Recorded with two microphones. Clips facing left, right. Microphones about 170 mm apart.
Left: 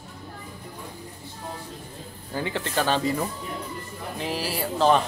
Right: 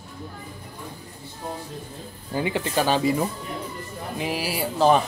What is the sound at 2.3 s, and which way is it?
Speech, 15° right (ahead or behind).